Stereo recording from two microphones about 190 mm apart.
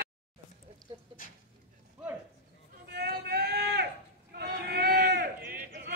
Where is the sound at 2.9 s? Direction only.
55° right (ahead or behind).